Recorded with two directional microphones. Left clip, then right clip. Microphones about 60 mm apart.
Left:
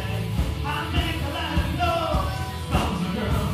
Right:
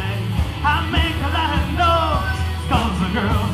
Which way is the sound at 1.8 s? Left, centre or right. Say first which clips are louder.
Right 8 dB; right.